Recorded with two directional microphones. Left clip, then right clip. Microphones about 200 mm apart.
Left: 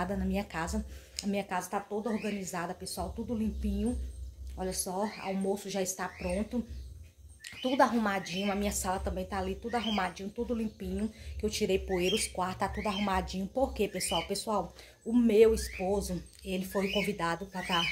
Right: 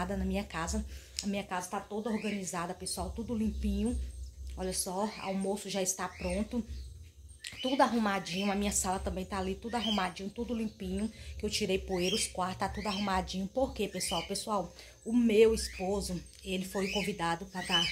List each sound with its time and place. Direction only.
0.0 s speech: 5° right (ahead or behind)
2.2 s a woman's voice: 15° right (ahead or behind)